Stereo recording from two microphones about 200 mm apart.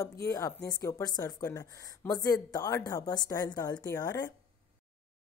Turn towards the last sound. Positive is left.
turn(degrees=20)  # may be behind; listen again after turning